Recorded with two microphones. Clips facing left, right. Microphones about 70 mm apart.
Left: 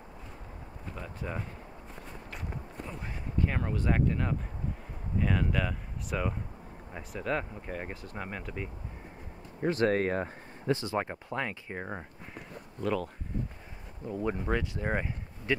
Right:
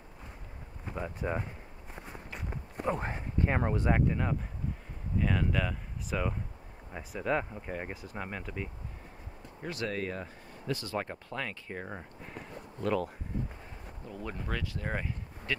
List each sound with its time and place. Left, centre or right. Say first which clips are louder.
0.8 s speech: right 5 dB; right
2.0 s walk: even; centre
2.8 s speech: right 12 dB; right
3.1 s speech: right 2 dB; right
3.9 s speech: left 3 dB; centre
5.2 s speech: left 1 dB; centre
9.6 s speech: left 8 dB; left
10.7 s speech: left 4 dB; left
12.8 s speech: even; centre
14.0 s speech: left 8 dB; centre